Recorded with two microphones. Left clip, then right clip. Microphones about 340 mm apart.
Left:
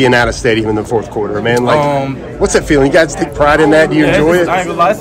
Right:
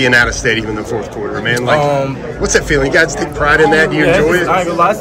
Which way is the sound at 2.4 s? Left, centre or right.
Centre.